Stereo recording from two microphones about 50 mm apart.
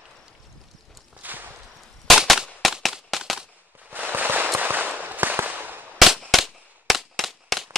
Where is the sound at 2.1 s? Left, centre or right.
Centre.